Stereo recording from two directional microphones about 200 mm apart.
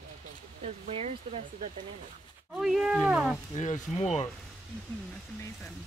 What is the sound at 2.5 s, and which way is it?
Speech, 5° right (ahead or behind).